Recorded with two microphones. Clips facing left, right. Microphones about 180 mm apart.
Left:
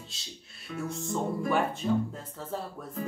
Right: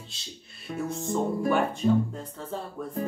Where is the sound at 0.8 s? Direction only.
Centre (ahead or behind).